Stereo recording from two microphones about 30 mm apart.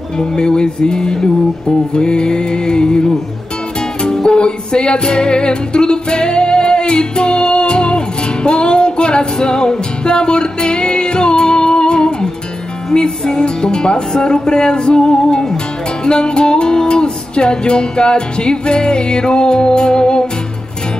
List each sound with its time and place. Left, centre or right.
0.2 s music: left